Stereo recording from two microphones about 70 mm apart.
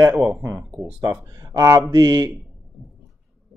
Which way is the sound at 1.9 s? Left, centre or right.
Right.